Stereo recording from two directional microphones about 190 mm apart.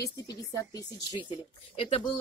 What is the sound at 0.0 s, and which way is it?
A woman's voice, 20° left (ahead or behind).